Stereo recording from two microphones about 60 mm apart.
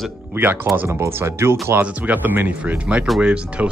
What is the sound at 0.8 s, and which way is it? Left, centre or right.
Speech, right.